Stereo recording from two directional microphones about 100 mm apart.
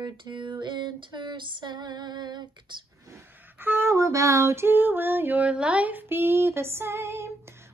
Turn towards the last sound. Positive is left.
turn(degrees=-25)  # may be behind; listen again after turning